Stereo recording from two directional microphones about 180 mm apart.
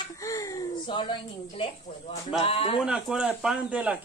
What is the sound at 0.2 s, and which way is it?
Speech, 20° left (ahead or behind).